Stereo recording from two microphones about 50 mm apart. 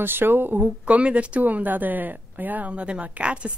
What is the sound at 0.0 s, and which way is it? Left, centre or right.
Speech, right.